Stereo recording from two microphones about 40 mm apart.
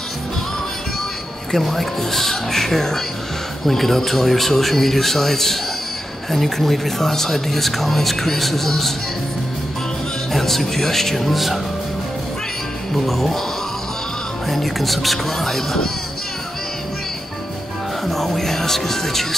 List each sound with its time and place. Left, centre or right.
1.5 s speech: centre
10.3 s speech: centre
11.3 s speech: centre
12.9 s speech: centre
14.5 s speech: centre
18.0 s music: centre